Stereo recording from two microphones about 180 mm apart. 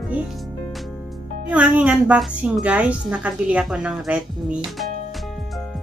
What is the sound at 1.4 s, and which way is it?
A woman's voice, 5° right (ahead or behind).